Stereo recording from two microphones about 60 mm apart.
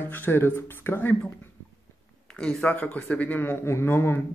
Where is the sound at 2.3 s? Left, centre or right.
Centre.